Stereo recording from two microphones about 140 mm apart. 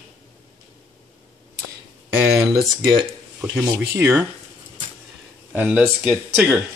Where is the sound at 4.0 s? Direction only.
20° right (ahead or behind).